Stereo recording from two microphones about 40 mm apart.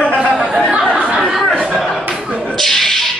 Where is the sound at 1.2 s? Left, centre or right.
Centre.